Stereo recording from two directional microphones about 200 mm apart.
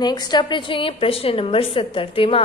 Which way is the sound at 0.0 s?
20° left (ahead or behind).